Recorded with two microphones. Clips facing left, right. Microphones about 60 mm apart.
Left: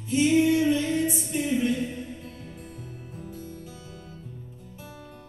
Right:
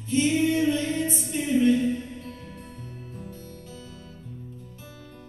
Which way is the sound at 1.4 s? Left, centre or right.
Centre.